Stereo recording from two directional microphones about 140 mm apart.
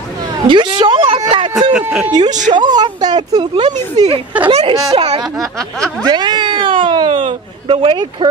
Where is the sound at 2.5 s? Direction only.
30° right (ahead or behind).